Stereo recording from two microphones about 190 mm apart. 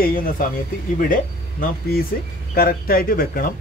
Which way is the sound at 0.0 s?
50° left (ahead or behind).